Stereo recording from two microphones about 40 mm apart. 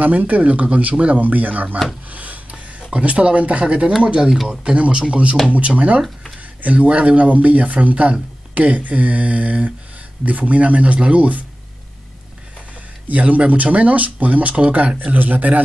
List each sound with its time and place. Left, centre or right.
0.0 s speech: right
1.2 s speech: right
2.0 s a sound: right
2.9 s speech: right
13.1 s speech: right